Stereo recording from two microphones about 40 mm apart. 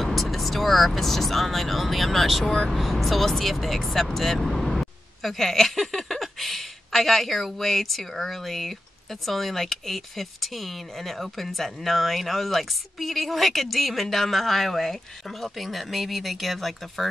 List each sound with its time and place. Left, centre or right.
0.0 s speech: centre
2.4 s speech: centre
2.7 s speech: centre